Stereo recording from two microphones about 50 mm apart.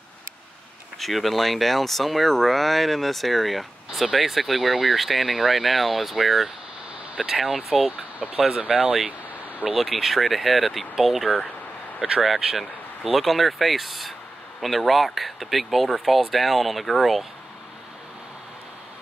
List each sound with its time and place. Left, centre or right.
0.9 s speech: centre
8.2 s speech: centre
12.0 s speech: centre